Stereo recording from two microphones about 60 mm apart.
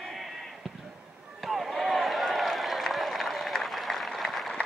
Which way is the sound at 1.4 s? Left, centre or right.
Centre.